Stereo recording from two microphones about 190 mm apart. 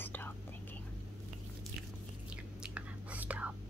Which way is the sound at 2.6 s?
5° right (ahead or behind).